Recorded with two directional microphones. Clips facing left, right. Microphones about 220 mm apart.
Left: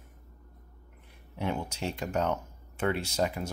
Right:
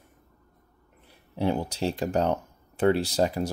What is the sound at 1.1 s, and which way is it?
Speech, 35° right (ahead or behind).